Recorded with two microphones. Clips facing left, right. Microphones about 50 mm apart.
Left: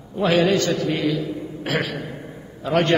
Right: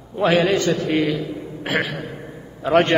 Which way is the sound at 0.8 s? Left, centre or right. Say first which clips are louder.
Right 2 dB; right.